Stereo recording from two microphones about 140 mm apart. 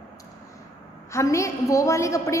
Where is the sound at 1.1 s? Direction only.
20° left (ahead or behind).